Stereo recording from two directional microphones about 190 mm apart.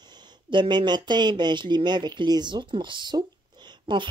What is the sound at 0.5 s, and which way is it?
Speech, 25° right (ahead or behind).